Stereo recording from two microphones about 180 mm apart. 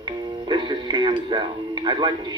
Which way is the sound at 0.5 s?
25° right (ahead or behind).